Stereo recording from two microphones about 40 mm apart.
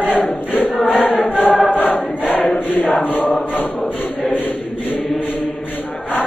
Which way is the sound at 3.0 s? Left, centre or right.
Left.